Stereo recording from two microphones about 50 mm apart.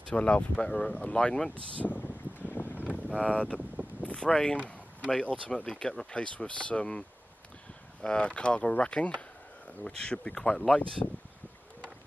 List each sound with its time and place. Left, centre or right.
0.1 s speech: left
0.7 s speech: centre
1.5 s a sound: left
3.1 s speech: left
4.0 s a sound: left
4.3 s speech: centre